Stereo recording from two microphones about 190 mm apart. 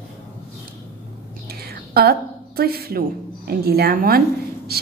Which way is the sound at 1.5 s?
55° right (ahead or behind).